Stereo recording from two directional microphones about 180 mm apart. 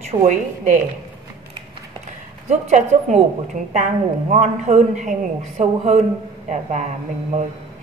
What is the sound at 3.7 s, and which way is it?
A woman's voice, 40° right (ahead or behind).